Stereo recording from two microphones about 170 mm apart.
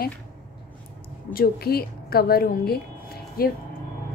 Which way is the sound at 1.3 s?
65° left (ahead or behind).